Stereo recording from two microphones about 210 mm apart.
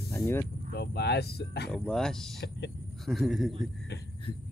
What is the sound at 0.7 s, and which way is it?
Speech, 50° left (ahead or behind).